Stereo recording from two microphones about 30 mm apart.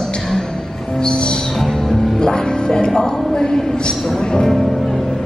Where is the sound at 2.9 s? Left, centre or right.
Centre.